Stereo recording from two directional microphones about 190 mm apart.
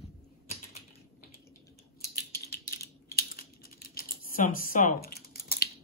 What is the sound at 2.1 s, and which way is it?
Typing, 50° left (ahead or behind).